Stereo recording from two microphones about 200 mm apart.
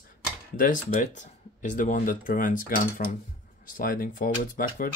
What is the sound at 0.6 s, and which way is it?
Speech, 45° left (ahead or behind).